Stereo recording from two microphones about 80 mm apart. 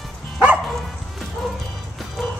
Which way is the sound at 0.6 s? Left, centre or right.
Centre.